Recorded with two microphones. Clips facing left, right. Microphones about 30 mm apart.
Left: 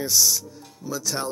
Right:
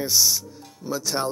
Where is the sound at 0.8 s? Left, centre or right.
Right.